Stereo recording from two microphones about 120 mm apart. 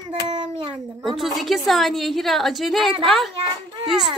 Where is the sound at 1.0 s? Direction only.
Centre (ahead or behind).